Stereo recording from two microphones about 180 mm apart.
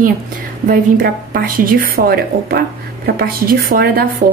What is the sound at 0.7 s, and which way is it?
A woman's voice, 60° right (ahead or behind).